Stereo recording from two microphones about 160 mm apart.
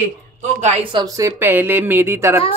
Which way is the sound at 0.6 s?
45° right (ahead or behind).